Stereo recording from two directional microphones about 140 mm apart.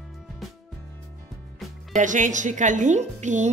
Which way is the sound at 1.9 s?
65° right (ahead or behind).